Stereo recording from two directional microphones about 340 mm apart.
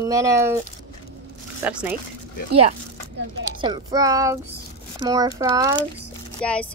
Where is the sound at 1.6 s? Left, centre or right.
Centre.